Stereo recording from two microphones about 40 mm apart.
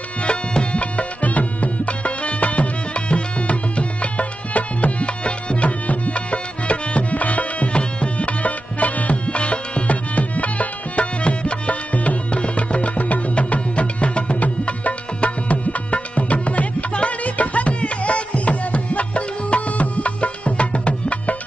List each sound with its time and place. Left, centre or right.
0.2 s music: left